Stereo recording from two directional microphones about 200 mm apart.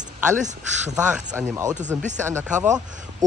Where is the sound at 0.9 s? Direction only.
5° right (ahead or behind).